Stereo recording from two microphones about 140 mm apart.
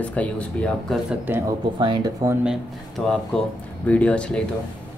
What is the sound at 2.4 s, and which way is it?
Speech, centre (ahead or behind).